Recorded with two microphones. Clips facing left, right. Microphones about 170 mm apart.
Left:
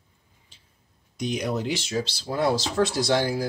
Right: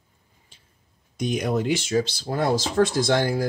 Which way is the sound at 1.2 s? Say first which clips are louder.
Right 3 dB; 50° right (ahead or behind).